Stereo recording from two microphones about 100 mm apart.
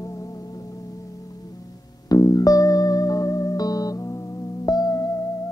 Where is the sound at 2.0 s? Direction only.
40° left (ahead or behind).